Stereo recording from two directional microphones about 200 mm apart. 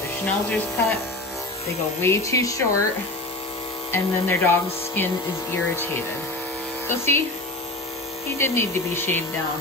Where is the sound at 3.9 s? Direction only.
10° left (ahead or behind).